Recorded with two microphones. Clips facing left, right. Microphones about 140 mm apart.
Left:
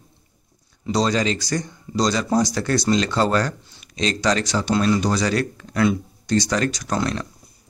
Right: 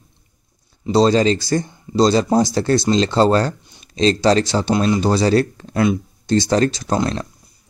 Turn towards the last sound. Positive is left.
turn(degrees=-25)  # may be behind; listen again after turning